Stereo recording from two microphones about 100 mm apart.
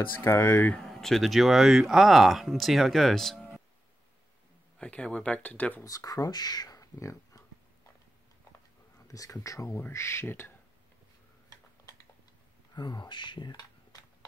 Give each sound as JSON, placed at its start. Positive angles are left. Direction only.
{"t": 0.2, "sound": "speech", "side_deg": 20}
{"t": 0.7, "sound": "speech", "side_deg": 5}
{"t": 4.7, "sound": "speech", "side_deg": 10}
{"t": 5.9, "sound": "speech", "side_deg": 35}
{"t": 9.0, "sound": "speech", "side_deg": 35}
{"t": 9.8, "sound": "speech", "side_deg": 25}
{"t": 12.7, "sound": "speech", "side_deg": 45}